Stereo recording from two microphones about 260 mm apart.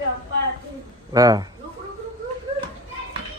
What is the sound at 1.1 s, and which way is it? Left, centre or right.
Speech, centre.